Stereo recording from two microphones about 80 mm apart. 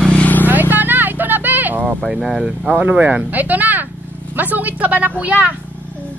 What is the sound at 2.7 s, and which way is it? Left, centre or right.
A woman's voice, centre.